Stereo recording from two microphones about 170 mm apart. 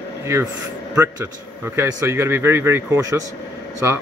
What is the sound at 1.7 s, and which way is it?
Speech, 15° right (ahead or behind).